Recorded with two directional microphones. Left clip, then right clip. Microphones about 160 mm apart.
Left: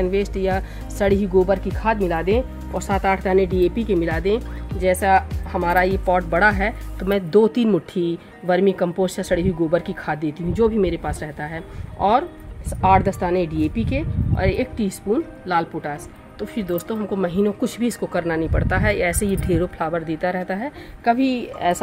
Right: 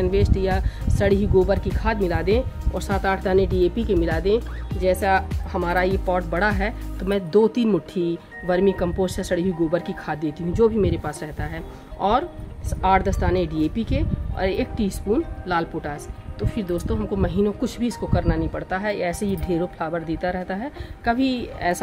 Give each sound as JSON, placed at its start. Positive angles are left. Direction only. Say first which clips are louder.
{"t": 0.0, "sound": "speech", "louder": "left 1 dB", "side_deg": 40}